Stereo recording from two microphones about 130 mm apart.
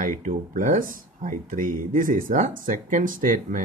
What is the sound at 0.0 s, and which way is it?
Speech, 80° right.